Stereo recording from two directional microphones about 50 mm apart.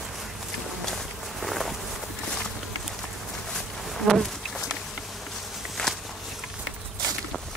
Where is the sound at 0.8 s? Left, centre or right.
Centre.